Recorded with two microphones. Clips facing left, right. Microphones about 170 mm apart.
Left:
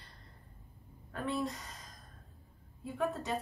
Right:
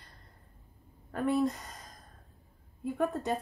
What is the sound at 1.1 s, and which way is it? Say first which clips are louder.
Speech: right 7 dB; 50° right (ahead or behind).